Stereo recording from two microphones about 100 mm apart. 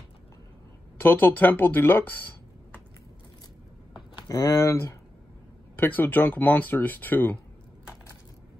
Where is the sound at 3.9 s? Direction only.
45° left (ahead or behind).